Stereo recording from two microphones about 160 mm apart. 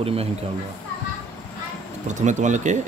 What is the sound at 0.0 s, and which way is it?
Speech, 35° right (ahead or behind).